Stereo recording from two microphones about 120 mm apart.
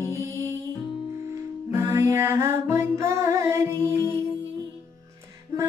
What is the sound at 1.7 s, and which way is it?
Music, 25° right (ahead or behind).